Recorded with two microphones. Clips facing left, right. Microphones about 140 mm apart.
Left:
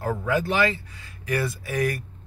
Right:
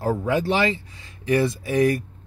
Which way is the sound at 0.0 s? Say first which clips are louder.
Right 3 dB; 25° right (ahead or behind).